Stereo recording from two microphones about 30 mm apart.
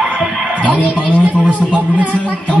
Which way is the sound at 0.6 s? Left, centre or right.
Left.